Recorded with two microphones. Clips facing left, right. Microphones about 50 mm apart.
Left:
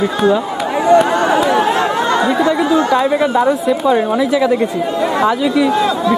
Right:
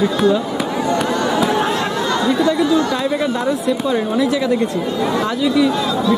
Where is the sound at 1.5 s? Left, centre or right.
Left.